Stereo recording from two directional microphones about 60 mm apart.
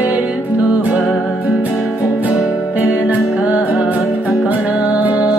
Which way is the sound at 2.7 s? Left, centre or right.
Right.